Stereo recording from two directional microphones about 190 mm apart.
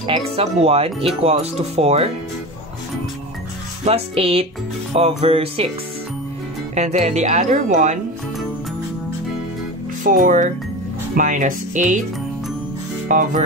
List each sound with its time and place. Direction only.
0.0 s speech: 30° right (ahead or behind)
3.8 s speech: 30° right (ahead or behind)
6.7 s speech: 35° right (ahead or behind)
10.0 s speech: 45° right (ahead or behind)
13.1 s speech: 40° right (ahead or behind)